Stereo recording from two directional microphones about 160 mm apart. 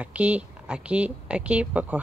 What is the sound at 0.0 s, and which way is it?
A woman's voice, 10° right (ahead or behind).